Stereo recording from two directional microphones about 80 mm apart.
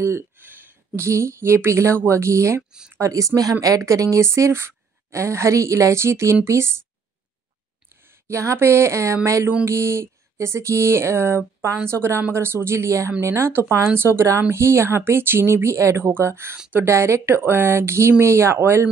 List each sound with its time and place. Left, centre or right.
0.0 s a sound: right
0.5 s a woman's voice: right
7.9 s a woman's voice: right